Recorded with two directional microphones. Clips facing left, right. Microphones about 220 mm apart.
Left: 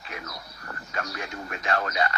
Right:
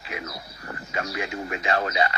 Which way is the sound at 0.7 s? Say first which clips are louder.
Right 3 dB; 20° right (ahead or behind).